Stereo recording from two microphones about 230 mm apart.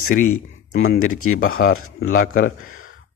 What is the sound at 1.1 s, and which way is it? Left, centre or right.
Speech, left.